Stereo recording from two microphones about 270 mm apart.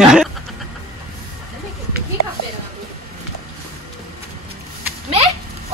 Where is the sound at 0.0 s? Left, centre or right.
Centre.